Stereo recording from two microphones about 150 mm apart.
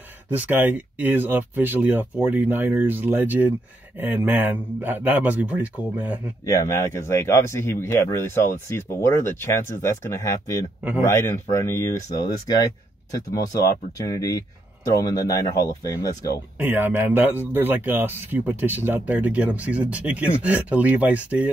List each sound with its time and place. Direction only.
0.3 s speech: 10° right (ahead or behind)
6.4 s speech: 20° left (ahead or behind)
13.1 s speech: 25° left (ahead or behind)
16.5 s speech: 15° right (ahead or behind)